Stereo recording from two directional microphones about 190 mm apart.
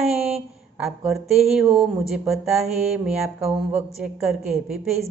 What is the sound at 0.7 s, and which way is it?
Speech, centre (ahead or behind).